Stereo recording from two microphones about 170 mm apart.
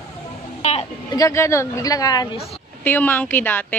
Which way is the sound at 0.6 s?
35° left (ahead or behind).